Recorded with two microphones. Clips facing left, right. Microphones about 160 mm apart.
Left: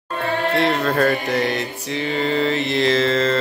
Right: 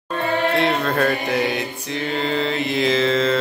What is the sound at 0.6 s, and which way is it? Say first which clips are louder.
Mantra: left 1 dB; centre (ahead or behind).